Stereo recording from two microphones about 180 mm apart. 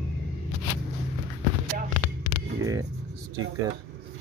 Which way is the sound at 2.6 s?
20° right (ahead or behind).